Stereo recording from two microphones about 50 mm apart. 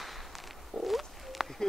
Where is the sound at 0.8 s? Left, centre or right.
Centre.